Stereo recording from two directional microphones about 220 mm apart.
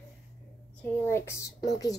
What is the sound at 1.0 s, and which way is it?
Speech, 10° left (ahead or behind).